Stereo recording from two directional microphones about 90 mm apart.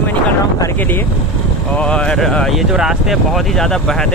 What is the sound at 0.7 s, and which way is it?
Speech, 20° left (ahead or behind).